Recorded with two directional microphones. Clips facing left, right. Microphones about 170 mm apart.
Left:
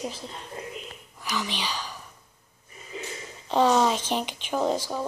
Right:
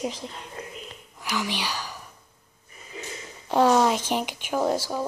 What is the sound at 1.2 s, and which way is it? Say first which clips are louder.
Speech: right 2 dB; 10° right (ahead or behind).